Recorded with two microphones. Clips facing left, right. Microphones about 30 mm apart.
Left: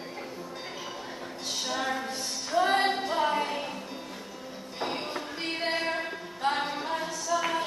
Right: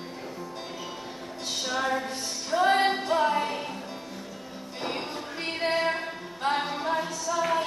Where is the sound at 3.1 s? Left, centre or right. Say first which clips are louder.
Right 2 dB; centre.